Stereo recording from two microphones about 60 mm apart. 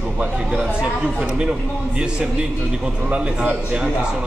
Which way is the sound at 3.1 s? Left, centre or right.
Right.